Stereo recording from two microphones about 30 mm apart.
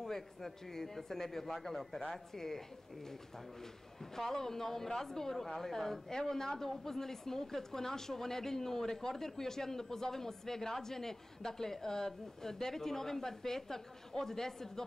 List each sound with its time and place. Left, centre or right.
0.0 s speech: centre
4.1 s speech: centre